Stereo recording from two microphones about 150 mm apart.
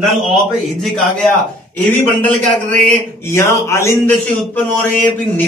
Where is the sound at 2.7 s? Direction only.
15° left (ahead or behind).